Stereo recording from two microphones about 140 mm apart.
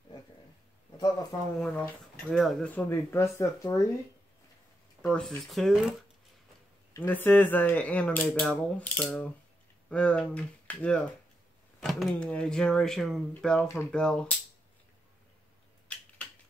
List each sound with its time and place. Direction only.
1.6 s speech: 10° left (ahead or behind)
2.7 s speech: 15° left (ahead or behind)
5.0 s speech: 5° left (ahead or behind)
6.9 s speech: 15° left (ahead or behind)
15.9 s a sound: 10° left (ahead or behind)